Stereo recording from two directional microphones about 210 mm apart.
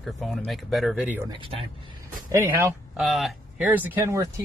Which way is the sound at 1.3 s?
25° right (ahead or behind).